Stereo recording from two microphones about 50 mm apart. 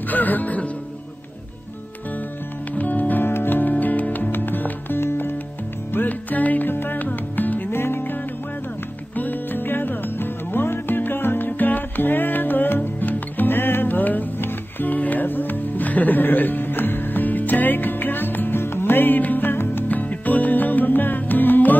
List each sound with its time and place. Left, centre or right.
0.1 s music: left
2.7 s music: left
3.7 s music: left
5.9 s music: left
7.7 s music: left
19.9 s music: left